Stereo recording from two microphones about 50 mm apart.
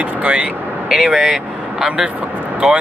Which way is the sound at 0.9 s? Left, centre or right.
Centre.